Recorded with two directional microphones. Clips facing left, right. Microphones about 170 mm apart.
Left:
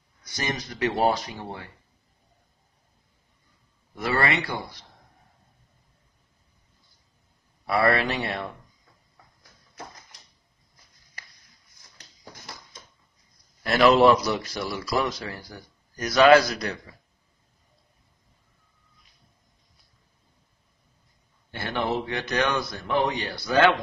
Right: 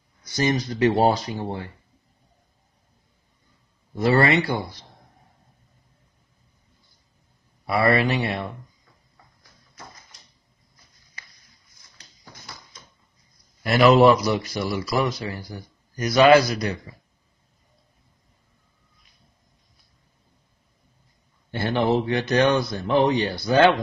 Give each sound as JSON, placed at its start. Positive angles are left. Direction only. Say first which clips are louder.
{"t": 0.4, "sound": "speech", "louder": "right 7 dB", "side_deg": -25}
{"t": 3.9, "sound": "speech", "louder": "right 6 dB", "side_deg": -30}
{"t": 7.6, "sound": "speech", "louder": "right 2 dB", "side_deg": -5}
{"t": 13.6, "sound": "speech", "louder": "right 2 dB", "side_deg": -5}
{"t": 21.5, "sound": "speech", "louder": "right 6 dB", "side_deg": -30}